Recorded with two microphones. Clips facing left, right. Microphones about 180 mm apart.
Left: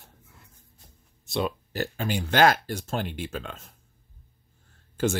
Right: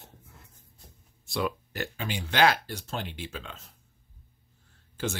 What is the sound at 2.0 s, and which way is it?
Speech, 45° left (ahead or behind).